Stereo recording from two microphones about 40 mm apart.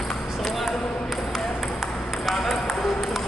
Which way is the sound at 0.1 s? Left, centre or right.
Centre.